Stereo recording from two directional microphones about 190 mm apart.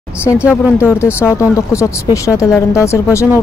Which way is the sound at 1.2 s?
15° left (ahead or behind).